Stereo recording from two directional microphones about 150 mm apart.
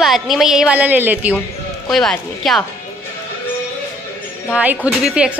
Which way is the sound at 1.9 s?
Centre (ahead or behind).